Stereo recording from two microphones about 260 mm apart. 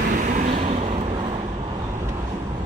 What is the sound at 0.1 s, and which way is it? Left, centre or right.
Vehicle, right.